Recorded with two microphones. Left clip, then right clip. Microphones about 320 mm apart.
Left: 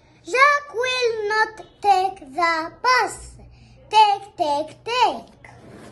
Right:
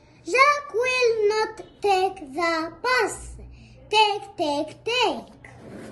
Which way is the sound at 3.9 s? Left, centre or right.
Left.